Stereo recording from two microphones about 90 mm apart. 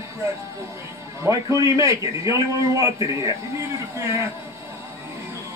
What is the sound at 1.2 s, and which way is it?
A man's voice, 40° right (ahead or behind).